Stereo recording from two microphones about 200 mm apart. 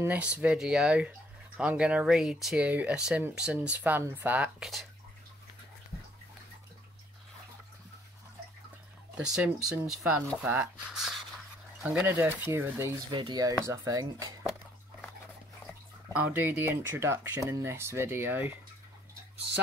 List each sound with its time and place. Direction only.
0.0 s speech: 10° right (ahead or behind)
9.1 s speech: 5° right (ahead or behind)
16.1 s speech: 10° right (ahead or behind)